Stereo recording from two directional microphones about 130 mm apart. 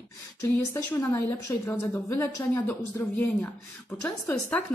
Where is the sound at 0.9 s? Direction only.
15° left (ahead or behind).